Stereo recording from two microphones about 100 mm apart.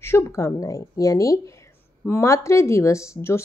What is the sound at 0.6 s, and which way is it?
A woman's voice, 35° left (ahead or behind).